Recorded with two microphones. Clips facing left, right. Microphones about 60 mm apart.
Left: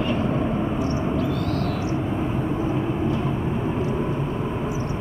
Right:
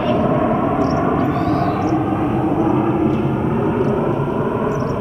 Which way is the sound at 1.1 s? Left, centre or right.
Right.